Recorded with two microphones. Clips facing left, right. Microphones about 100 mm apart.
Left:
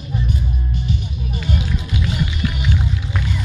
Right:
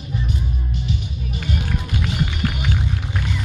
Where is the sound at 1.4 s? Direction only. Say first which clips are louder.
Left 1 dB; 55° right (ahead or behind).